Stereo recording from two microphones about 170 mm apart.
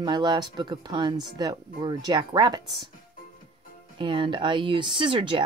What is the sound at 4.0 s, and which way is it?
Speech, 30° right (ahead or behind).